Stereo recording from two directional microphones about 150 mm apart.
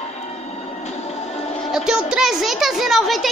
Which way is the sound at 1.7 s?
5° right (ahead or behind).